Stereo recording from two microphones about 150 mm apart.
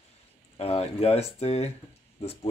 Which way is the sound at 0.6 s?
40° left (ahead or behind).